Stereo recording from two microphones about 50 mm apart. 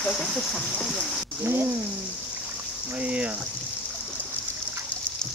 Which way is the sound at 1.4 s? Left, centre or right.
Right.